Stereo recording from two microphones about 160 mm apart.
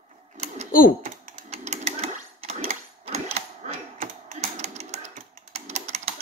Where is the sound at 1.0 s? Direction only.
45° right (ahead or behind).